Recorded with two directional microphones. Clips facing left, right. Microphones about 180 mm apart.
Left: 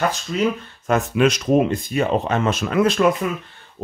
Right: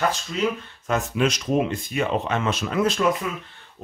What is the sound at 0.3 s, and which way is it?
Speech, 50° left (ahead or behind).